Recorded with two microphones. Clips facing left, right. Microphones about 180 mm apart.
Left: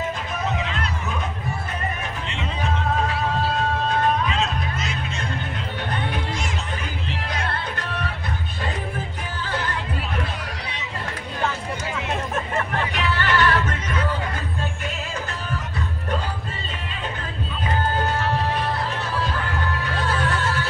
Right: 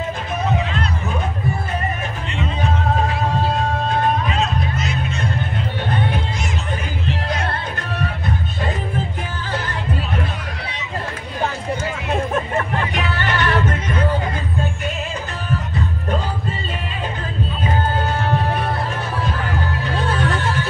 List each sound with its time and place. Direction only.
12.9 s music: 20° right (ahead or behind)
20.2 s music: 20° right (ahead or behind)